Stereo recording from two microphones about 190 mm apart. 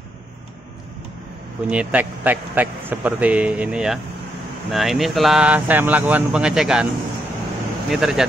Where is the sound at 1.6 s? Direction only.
5° right (ahead or behind).